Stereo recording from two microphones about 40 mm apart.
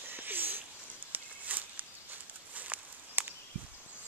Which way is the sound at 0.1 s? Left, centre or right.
Right.